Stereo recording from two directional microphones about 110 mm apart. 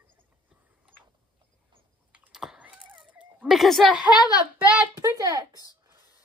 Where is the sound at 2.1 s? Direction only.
5° right (ahead or behind).